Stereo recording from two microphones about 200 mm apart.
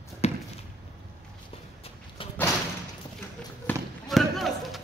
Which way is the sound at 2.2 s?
25° left (ahead or behind).